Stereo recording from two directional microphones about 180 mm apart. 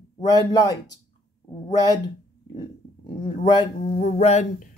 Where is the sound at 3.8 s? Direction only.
35° left (ahead or behind).